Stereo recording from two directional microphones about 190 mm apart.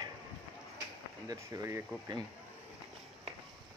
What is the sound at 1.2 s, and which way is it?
Speech, 20° right (ahead or behind).